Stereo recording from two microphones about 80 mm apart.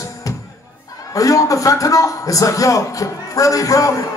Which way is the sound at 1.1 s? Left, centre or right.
Left.